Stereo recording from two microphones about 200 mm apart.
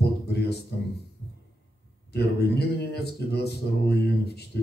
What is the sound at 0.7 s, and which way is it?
Speech, 55° left (ahead or behind).